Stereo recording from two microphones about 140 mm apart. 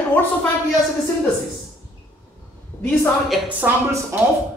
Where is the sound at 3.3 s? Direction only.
10° right (ahead or behind).